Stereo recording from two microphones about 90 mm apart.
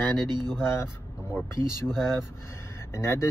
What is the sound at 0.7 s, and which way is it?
Speech, 30° left (ahead or behind).